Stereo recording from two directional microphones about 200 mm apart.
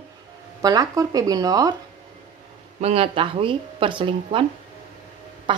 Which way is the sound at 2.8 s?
30° right (ahead or behind).